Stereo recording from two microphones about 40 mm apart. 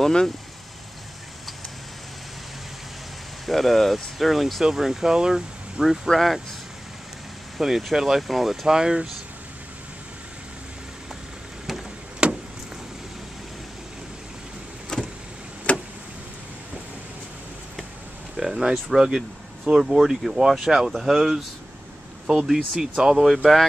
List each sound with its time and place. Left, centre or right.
0.0 s speech: centre
3.4 s speech: centre
6.1 s speech: centre
7.6 s speech: centre
8.7 s speech: centre
12.2 s vehicle: right
14.9 s vehicle: centre
15.7 s vehicle: left
18.3 s a sound: centre
18.9 s speech: centre
22.5 s speech: centre